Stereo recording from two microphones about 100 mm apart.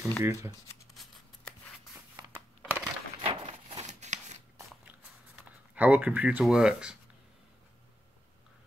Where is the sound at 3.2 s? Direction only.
65° right (ahead or behind).